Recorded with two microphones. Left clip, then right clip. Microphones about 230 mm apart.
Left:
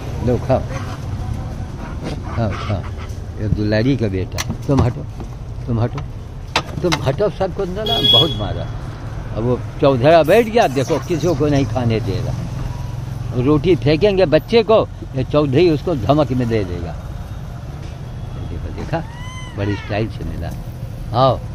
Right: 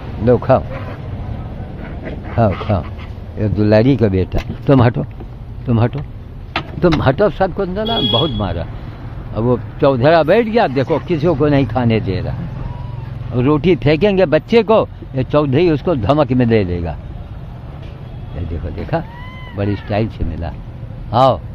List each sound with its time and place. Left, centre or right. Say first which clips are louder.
0.3 s speech: right 6 dB; right
2.3 s speech: right 9 dB; right
13.4 s speech: right 1 dB; right
18.9 s speech: right 3 dB; centre